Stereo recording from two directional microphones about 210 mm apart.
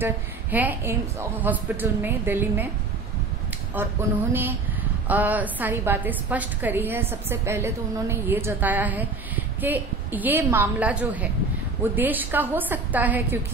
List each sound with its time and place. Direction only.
0.0 s a woman's voice: 10° right (ahead or behind)
3.7 s a woman's voice: 10° right (ahead or behind)